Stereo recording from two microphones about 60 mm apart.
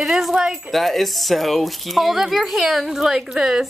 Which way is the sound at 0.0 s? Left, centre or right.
Centre.